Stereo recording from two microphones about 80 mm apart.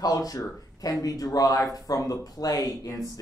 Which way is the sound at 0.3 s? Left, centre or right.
Left.